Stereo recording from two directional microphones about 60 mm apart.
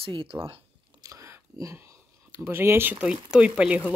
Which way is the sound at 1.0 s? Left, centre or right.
Right.